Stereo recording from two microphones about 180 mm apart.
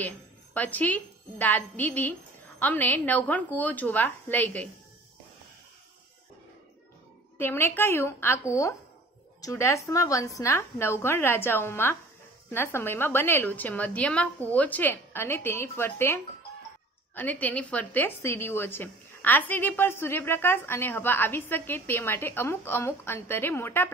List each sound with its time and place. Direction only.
0.6 s a woman's voice: 10° left (ahead or behind)
7.3 s a woman's voice: 10° left (ahead or behind)